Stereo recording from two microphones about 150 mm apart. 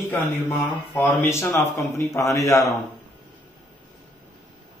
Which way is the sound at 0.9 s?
10° left (ahead or behind).